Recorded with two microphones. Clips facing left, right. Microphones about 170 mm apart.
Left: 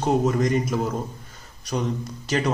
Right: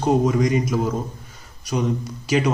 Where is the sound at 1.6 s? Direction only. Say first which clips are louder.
Right 3 dB; 5° right (ahead or behind).